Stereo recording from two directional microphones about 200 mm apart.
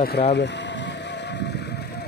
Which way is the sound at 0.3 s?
60° left (ahead or behind).